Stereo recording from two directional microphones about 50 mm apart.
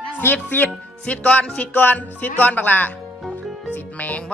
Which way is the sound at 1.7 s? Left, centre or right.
Left.